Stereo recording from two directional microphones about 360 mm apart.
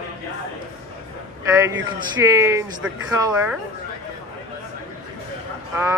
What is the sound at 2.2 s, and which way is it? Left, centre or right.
Speech, centre.